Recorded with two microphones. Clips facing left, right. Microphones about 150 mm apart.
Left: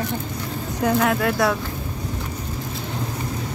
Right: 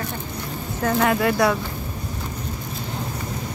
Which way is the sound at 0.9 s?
Centre (ahead or behind).